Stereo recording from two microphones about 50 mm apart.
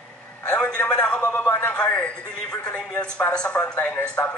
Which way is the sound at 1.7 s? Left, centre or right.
Left.